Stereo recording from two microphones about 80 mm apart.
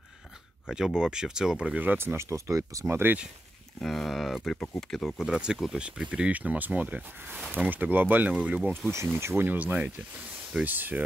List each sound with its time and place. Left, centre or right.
0.7 s speech: centre; by 3.2 s right
3.8 s speech: centre
5.2 s speech: centre
8.3 s speech: centre
9.2 s speech: right